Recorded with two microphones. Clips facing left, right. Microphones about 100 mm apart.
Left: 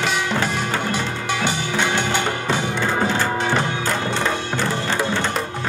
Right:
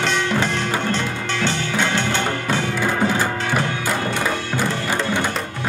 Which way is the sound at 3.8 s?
10° right (ahead or behind).